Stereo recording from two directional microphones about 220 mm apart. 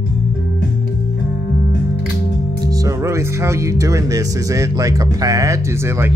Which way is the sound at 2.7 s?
15° right (ahead or behind).